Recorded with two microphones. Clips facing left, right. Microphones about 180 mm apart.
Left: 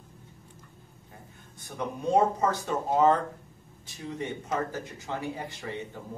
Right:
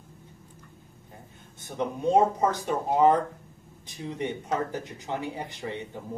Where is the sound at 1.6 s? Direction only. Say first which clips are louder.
Right 4 dB; 20° right (ahead or behind).